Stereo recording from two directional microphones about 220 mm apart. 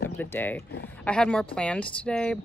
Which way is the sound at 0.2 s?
10° left (ahead or behind).